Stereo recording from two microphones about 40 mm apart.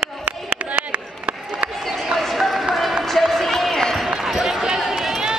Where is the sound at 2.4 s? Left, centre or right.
Centre.